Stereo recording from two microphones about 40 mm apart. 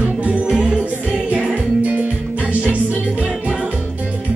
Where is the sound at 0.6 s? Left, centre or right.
Right.